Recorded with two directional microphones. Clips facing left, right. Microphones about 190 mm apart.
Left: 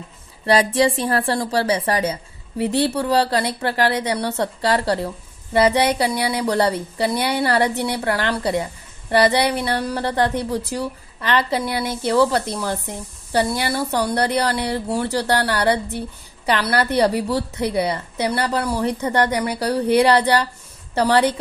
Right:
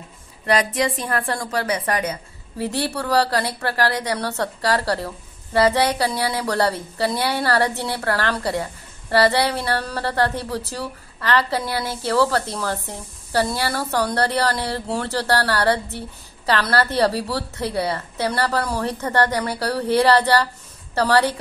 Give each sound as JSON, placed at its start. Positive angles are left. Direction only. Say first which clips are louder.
{"t": 0.5, "sound": "a woman's voice", "louder": "left 4 dB", "side_deg": 30}